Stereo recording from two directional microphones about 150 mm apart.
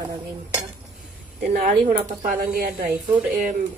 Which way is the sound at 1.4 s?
65° right (ahead or behind).